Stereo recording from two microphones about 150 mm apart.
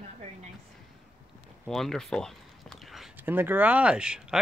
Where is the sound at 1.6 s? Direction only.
Centre (ahead or behind).